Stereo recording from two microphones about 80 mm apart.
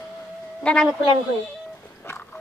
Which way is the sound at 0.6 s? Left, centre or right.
Centre.